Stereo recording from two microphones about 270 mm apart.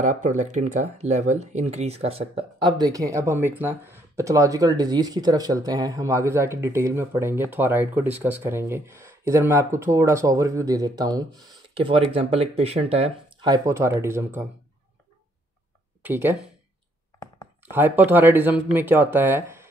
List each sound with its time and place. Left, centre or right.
0.0 s speech: right
11.5 s a sound: centre
12.1 s speech: right
16.0 s speech: centre
17.6 s speech: centre